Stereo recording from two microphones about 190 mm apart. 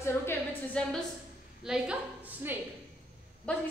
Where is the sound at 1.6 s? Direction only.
5° right (ahead or behind).